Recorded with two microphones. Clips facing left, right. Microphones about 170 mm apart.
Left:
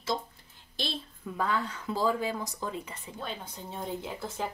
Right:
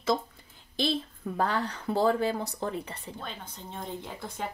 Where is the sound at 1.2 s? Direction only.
60° right (ahead or behind).